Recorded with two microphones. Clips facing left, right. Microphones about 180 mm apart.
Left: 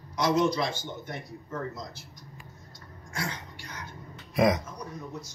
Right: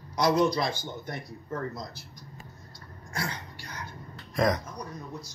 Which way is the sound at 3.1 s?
35° right (ahead or behind).